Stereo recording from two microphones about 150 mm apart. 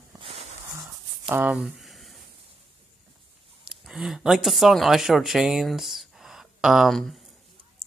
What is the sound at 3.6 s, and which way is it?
Speech, 5° right (ahead or behind).